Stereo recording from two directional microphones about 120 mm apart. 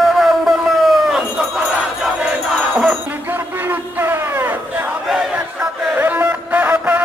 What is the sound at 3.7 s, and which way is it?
Crowd, 20° right (ahead or behind).